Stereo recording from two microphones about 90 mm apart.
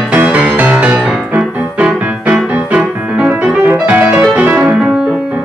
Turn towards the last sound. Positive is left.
turn(degrees=-15)  # may be behind; listen again after turning